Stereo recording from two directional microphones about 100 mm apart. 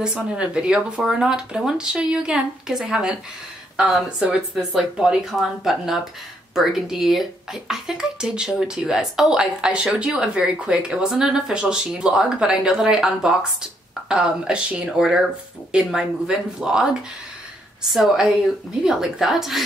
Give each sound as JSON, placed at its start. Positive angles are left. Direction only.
{"t": 0.0, "sound": "a woman's voice", "side_deg": -10}